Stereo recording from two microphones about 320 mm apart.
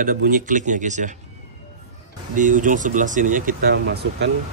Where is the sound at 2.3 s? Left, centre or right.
Right.